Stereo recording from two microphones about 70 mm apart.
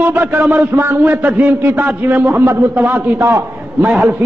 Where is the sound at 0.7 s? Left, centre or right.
Right.